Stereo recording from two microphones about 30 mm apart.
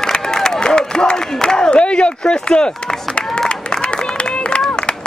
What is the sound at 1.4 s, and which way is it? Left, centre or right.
Crowd, left.